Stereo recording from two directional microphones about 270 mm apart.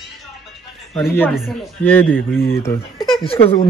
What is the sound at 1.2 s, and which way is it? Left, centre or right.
Speech, centre.